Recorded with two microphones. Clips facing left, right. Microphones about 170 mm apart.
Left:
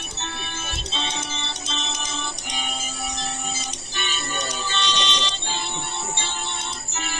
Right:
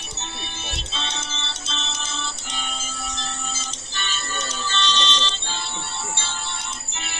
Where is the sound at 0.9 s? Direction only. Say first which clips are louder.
Left 4 dB; 15° left (ahead or behind).